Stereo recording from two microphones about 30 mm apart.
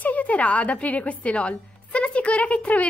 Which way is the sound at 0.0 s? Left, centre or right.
Left.